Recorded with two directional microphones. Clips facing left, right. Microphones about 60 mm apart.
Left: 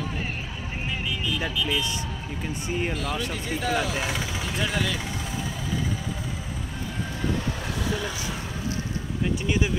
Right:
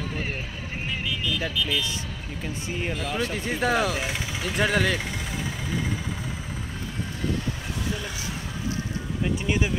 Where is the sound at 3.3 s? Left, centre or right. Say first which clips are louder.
Right 3 dB; right.